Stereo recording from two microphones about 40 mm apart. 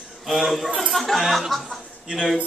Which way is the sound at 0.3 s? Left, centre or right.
Centre.